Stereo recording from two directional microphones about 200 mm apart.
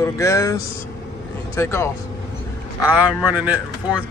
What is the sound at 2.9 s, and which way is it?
Speech, 5° right (ahead or behind).